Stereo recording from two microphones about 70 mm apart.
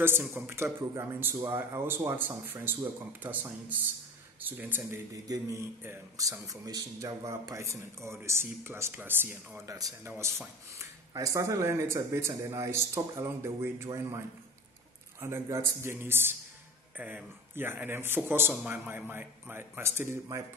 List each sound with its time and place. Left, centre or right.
0.0 s speech: right
4.4 s speech: right
5.1 s a man's voice: right
7.5 s speech: right
9.6 s speech: right
10.0 s speech: right
15.1 s speech: right
18.5 s speech: right